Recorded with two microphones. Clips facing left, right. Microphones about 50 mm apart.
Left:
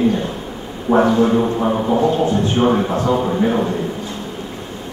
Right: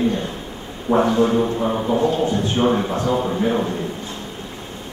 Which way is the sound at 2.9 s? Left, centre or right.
Left.